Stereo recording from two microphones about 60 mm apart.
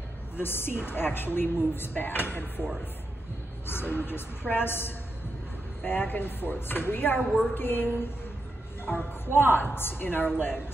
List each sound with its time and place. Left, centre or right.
0.4 s speech: left
3.6 s speech: left